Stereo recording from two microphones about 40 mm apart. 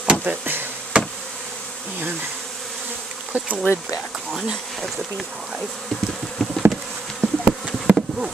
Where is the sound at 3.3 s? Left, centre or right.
Right.